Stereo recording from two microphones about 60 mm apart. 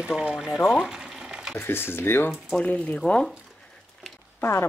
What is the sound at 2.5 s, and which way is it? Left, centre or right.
Speech, left.